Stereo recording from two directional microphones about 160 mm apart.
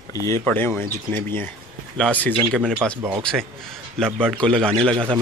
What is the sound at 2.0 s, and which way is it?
A man's voice, 10° left (ahead or behind).